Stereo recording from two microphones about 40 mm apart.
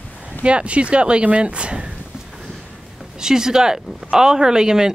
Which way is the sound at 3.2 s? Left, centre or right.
Centre.